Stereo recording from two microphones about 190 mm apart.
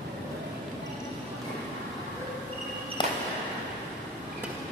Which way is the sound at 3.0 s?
25° left (ahead or behind).